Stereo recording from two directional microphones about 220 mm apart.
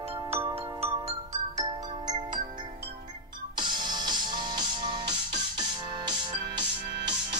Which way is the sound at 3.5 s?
20° right (ahead or behind).